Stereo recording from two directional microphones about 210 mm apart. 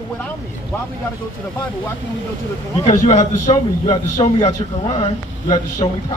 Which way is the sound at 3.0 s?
35° left (ahead or behind).